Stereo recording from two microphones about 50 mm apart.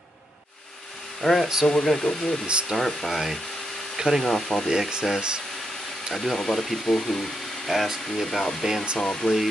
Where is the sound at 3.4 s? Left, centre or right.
Centre.